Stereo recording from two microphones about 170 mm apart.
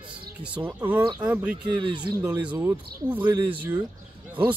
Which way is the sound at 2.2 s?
10° right (ahead or behind).